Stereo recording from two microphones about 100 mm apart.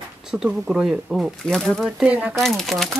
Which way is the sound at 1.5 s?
5° left (ahead or behind).